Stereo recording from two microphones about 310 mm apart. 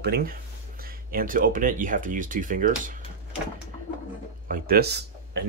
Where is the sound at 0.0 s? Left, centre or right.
Right.